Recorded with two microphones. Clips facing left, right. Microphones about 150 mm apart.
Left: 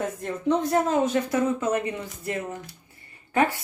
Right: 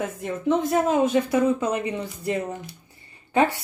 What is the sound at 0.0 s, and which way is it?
A woman's voice, 5° right (ahead or behind).